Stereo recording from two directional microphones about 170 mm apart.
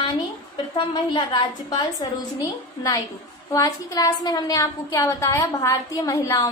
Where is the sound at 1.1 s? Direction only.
30° left (ahead or behind).